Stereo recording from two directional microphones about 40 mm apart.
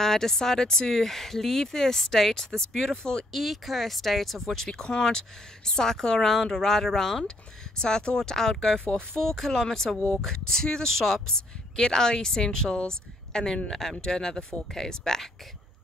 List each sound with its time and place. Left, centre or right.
0.0 s speech: centre
3.3 s speech: centre
4.6 s speech: centre